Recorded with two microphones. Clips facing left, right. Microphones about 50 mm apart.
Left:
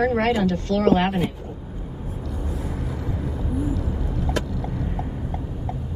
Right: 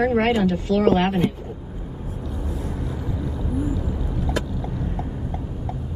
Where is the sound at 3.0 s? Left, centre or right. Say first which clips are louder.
Even; left.